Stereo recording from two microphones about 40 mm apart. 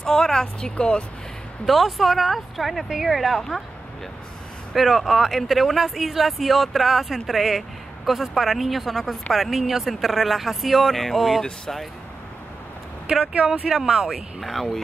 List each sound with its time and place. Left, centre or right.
0.0 s a woman's voice: centre
1.7 s speech: centre
4.7 s speech: centre
13.1 s speech: right
14.4 s speech: centre